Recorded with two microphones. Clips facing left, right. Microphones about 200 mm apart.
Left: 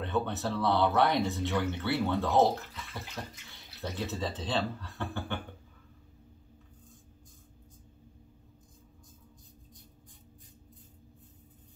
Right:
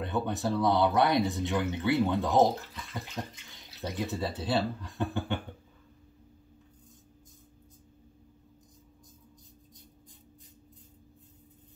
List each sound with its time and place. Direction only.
0.0 s speech: 15° right (ahead or behind)